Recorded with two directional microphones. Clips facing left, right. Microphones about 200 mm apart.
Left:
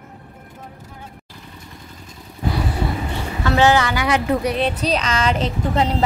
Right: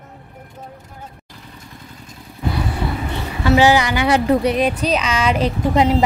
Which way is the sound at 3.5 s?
10° right (ahead or behind).